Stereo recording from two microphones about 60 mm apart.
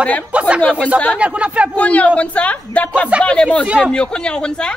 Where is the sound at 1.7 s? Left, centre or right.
Left.